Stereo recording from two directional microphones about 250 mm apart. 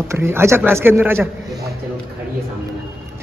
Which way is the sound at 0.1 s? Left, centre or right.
Centre.